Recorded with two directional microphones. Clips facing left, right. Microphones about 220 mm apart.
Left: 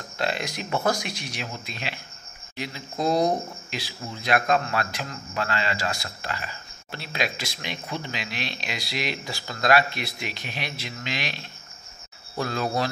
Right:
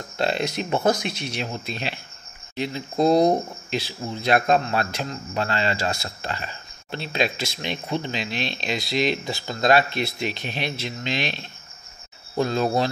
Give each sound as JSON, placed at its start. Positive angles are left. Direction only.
{"t": 0.2, "sound": "speech", "side_deg": -30}